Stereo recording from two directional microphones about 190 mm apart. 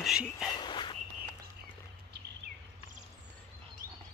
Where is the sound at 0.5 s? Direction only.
25° left (ahead or behind).